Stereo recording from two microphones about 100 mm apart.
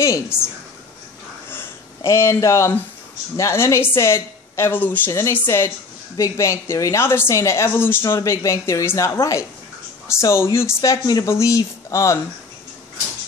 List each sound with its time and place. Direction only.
0.0 s a woman's voice: 25° left (ahead or behind)
2.0 s a woman's voice: 30° left (ahead or behind)
10.8 s speech: 40° left (ahead or behind)